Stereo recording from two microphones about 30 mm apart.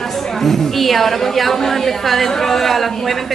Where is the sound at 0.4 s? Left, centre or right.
Centre.